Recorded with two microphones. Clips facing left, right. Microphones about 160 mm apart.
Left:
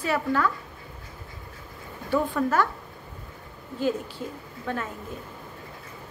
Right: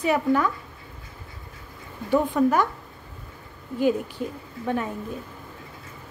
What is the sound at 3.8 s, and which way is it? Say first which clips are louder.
A woman's voice: right 4 dB; 15° right (ahead or behind).